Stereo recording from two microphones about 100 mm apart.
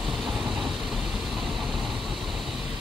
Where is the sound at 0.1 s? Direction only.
Centre (ahead or behind).